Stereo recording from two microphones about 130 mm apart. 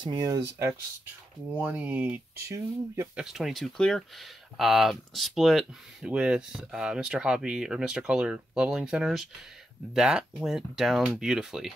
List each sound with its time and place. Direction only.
0.0 s speech: 30° right (ahead or behind)
1.5 s speech: 10° right (ahead or behind)
3.2 s speech: 5° right (ahead or behind)